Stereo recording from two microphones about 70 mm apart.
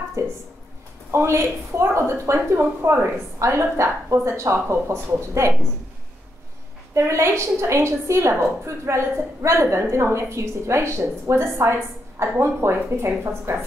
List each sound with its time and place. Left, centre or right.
0.2 s a woman's voice: right
6.9 s a woman's voice: right